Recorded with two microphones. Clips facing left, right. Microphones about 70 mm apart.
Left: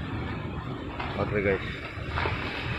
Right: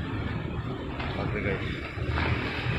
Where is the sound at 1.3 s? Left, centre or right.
Left.